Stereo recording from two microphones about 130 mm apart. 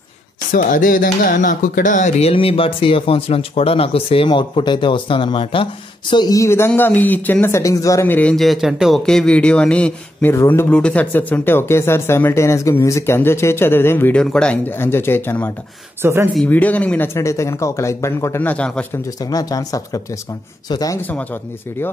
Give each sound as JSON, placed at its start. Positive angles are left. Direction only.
{"t": 0.5, "sound": "speech", "side_deg": 90}
{"t": 8.1, "sound": "speech", "side_deg": 10}
{"t": 10.3, "sound": "speech", "side_deg": 20}
{"t": 16.0, "sound": "speech", "side_deg": -20}
{"t": 16.4, "sound": "speech", "side_deg": 10}
{"t": 17.1, "sound": "a man's voice", "side_deg": 25}
{"t": 19.2, "sound": "a man's voice", "side_deg": 30}
{"t": 21.1, "sound": "speech", "side_deg": 15}